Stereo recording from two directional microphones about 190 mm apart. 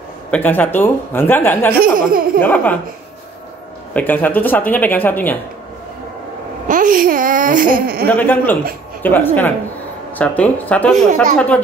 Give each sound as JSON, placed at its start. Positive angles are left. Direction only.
{"t": 0.3, "sound": "speech", "side_deg": 10}
{"t": 1.8, "sound": "speech", "side_deg": -50}
{"t": 2.4, "sound": "speech", "side_deg": 10}
{"t": 3.9, "sound": "speech", "side_deg": 10}
{"t": 6.7, "sound": "speech", "side_deg": -45}
{"t": 8.1, "sound": "speech", "side_deg": 10}